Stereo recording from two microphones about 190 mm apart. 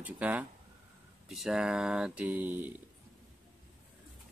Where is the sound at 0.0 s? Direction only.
10° right (ahead or behind).